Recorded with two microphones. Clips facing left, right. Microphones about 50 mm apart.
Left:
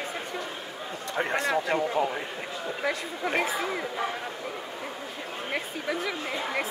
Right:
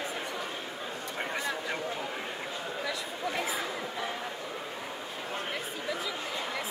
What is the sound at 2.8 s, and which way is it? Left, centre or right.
Speech, left.